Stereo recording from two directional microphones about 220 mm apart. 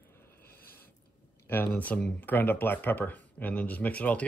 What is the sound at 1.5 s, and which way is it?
Speech, 10° left (ahead or behind).